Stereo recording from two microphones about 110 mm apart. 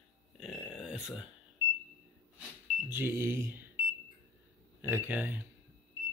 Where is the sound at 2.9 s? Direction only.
20° right (ahead or behind).